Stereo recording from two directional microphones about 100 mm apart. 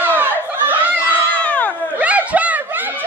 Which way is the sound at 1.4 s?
15° left (ahead or behind).